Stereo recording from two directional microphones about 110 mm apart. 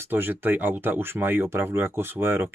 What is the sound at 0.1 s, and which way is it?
Speech, 15° right (ahead or behind).